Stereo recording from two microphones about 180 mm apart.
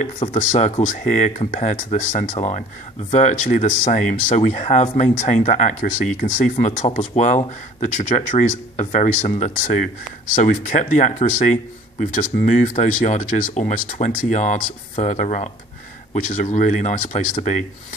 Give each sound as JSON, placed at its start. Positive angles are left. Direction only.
{"t": 0.2, "sound": "speech", "side_deg": 40}